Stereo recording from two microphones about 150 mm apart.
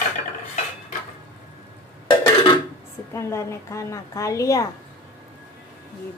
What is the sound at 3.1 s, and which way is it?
Dishes, 20° left (ahead or behind).